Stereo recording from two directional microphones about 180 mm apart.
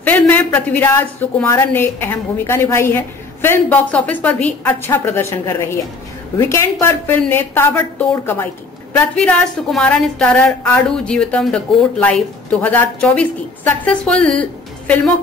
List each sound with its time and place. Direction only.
0.0 s a woman's voice: 10° left (ahead or behind)
8.9 s a woman's voice: 5° left (ahead or behind)